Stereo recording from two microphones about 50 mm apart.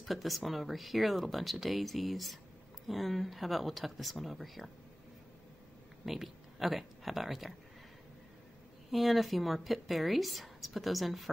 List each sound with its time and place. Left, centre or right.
0.0 s speech: centre
6.0 s speech: centre
8.9 s speech: centre